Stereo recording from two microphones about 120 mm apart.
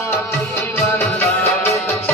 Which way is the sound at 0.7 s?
15° left (ahead or behind).